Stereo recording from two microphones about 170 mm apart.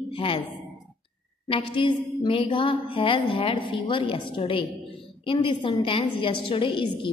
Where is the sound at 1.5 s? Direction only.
30° left (ahead or behind).